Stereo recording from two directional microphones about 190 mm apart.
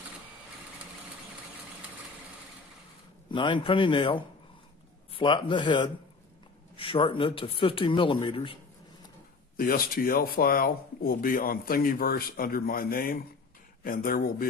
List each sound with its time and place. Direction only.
3.3 s speech: 25° left (ahead or behind)
9.6 s speech: 50° left (ahead or behind)